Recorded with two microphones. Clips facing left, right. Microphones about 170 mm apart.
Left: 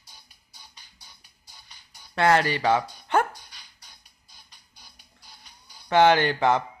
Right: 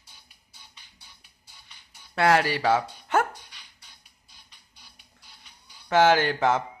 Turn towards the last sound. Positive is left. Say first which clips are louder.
# left 1 dB
turn(degrees=0)  # may be behind; listen again after turning